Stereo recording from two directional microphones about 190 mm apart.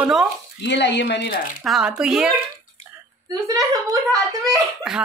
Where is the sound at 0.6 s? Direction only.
65° left (ahead or behind).